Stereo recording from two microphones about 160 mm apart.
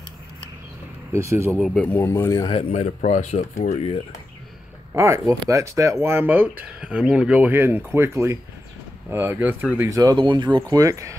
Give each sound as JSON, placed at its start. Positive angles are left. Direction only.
{"t": 1.1, "sound": "speech", "side_deg": -15}
{"t": 1.6, "sound": "speech", "side_deg": 5}
{"t": 2.7, "sound": "speech", "side_deg": 45}
{"t": 4.9, "sound": "speech", "side_deg": -20}